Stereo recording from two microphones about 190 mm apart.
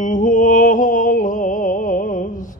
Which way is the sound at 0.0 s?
45° left (ahead or behind).